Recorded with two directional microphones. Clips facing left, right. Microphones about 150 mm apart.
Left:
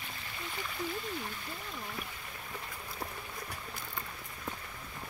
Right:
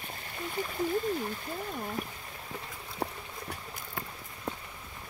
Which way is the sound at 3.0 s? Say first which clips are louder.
Right 7 dB; 30° right (ahead or behind).